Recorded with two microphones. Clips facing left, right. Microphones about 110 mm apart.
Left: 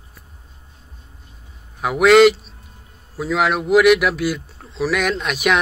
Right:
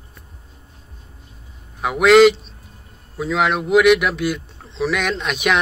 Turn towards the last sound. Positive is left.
turn(degrees=0)  # may be behind; listen again after turning